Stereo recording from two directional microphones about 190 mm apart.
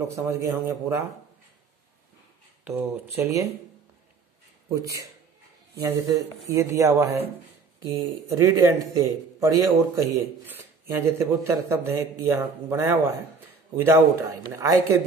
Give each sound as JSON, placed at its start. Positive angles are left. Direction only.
{"t": 0.2, "sound": "a man's voice", "side_deg": -15}
{"t": 2.6, "sound": "a man's voice", "side_deg": -10}
{"t": 4.6, "sound": "a man's voice", "side_deg": -15}